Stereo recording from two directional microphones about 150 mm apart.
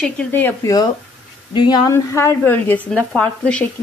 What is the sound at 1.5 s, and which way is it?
Speech, 30° left (ahead or behind).